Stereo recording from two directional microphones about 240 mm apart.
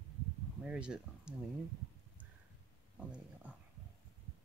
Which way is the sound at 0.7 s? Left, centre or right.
Centre.